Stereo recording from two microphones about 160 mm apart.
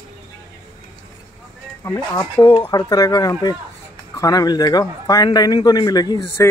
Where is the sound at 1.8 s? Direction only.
15° left (ahead or behind).